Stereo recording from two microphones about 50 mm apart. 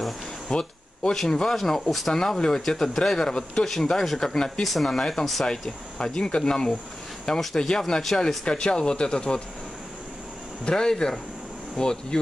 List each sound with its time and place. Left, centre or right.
0.5 s a sound: centre
1.1 s speech: centre
8.5 s speech: centre
10.6 s speech: centre